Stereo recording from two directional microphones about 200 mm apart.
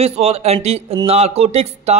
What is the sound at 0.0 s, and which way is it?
Speech, 30° right (ahead or behind).